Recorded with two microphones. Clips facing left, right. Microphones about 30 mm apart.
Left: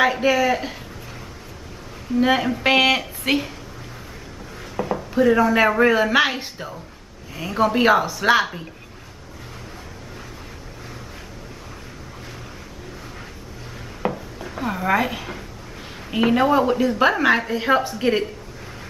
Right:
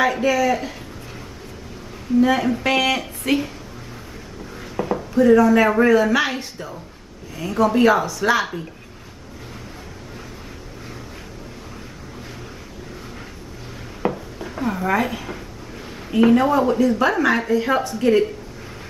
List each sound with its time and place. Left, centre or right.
0.0 s speech: centre
2.1 s speech: left
3.0 s speech: centre
4.7 s a sound: centre
5.1 s speech: left
14.0 s a sound: centre
16.1 s speech: centre